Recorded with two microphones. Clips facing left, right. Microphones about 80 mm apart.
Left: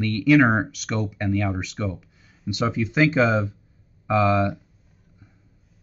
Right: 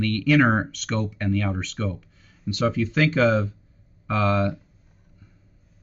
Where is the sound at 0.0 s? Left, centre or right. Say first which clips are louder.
Left 2 dB; centre.